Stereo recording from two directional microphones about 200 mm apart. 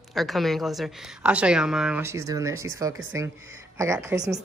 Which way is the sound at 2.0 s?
15° right (ahead or behind).